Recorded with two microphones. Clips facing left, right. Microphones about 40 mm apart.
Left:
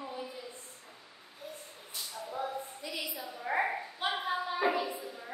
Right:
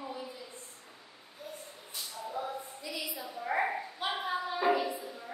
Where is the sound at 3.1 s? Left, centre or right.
Centre.